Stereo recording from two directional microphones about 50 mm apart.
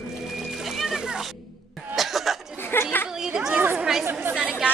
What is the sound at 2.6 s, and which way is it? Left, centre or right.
Chatter, left.